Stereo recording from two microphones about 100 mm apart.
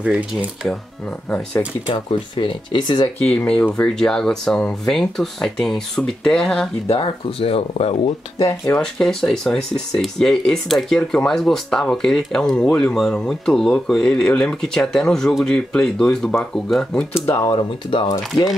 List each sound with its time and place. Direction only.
0.0 s speech: 10° right (ahead or behind)
2.0 s speech: 55° left (ahead or behind)
3.3 s speech: 10° left (ahead or behind)
6.9 s speech: 70° left (ahead or behind)
8.4 s speech: 35° left (ahead or behind)
8.7 s speech: 5° left (ahead or behind)
17.4 s speech: 50° left (ahead or behind)